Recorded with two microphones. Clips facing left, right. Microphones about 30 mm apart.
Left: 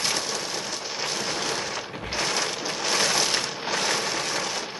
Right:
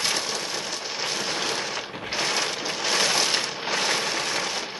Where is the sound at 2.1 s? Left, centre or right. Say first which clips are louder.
Right 1 dB; centre.